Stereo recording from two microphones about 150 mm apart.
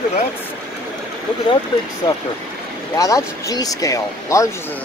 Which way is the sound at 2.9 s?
20° left (ahead or behind).